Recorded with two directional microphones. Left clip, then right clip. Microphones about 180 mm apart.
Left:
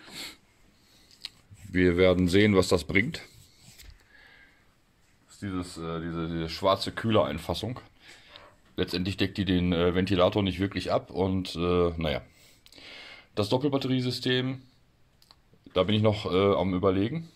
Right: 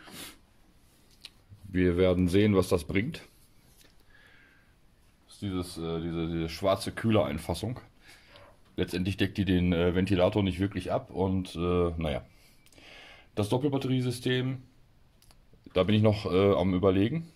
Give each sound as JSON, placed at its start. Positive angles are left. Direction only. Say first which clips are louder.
{"t": 0.0, "sound": "a sound", "louder": "left 5 dB", "side_deg": -15}
{"t": 1.2, "sound": "speech", "louder": "left 7 dB", "side_deg": 0}
{"t": 5.4, "sound": "speech", "louder": "even", "side_deg": -10}
{"t": 15.7, "sound": "speech", "louder": "left 1 dB", "side_deg": -15}